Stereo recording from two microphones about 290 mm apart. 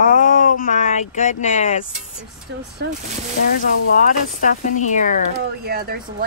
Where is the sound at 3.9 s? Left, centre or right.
Left.